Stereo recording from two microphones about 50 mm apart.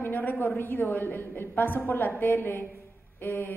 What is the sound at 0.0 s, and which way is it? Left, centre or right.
A woman's voice, left.